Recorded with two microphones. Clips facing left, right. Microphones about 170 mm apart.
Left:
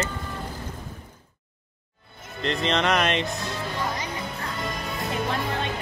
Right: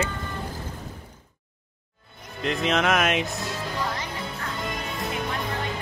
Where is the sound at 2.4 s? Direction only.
5° right (ahead or behind).